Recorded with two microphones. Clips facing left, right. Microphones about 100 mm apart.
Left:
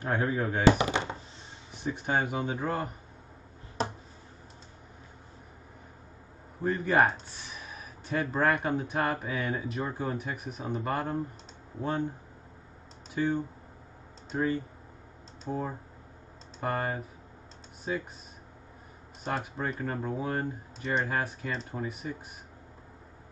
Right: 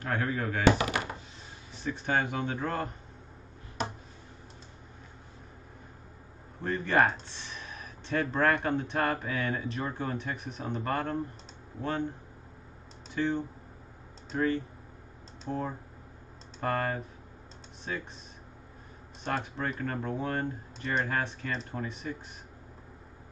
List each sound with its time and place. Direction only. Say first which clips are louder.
0.0 s speech: left 2 dB; 20° left (ahead or behind)
6.6 s speech: left 1 dB; 10° left (ahead or behind)
13.1 s speech: left 1 dB; 10° left (ahead or behind)
19.2 s speech: even; 10° left (ahead or behind)